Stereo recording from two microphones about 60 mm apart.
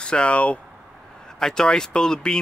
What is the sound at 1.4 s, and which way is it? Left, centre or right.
Speech, centre.